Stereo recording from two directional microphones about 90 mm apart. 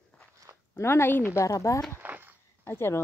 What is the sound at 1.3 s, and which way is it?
Speech, 35° left (ahead or behind).